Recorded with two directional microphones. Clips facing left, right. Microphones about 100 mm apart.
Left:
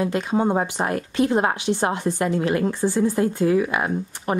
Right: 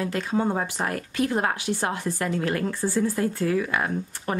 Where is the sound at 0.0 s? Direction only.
20° left (ahead or behind).